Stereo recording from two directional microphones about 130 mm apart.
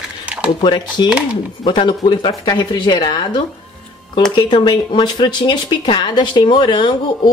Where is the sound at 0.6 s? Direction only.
35° left (ahead or behind).